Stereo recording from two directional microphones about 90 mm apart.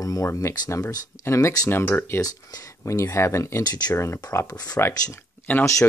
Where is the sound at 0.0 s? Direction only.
35° left (ahead or behind).